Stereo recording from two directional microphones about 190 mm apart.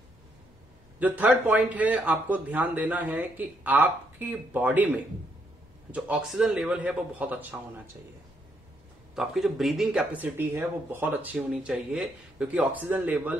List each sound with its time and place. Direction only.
0.9 s speech: 10° right (ahead or behind)
9.1 s speech: centre (ahead or behind)